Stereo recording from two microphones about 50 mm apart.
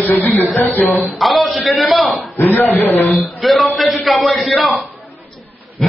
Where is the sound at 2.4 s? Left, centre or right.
Left.